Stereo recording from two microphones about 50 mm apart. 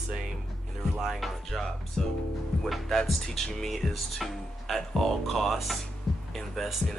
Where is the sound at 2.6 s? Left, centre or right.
Centre.